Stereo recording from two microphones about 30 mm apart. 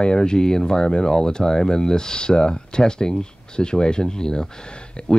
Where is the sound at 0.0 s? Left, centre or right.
Left.